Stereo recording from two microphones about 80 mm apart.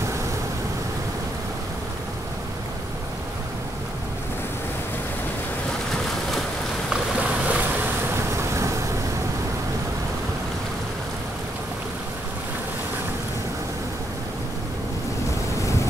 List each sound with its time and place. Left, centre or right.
6.9 s boat: centre
8.1 s vehicle: right